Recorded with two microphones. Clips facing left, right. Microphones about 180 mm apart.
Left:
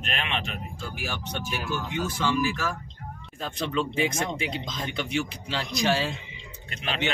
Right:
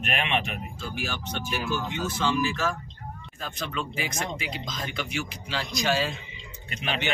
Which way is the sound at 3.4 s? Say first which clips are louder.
Left 5 dB; 30° left (ahead or behind).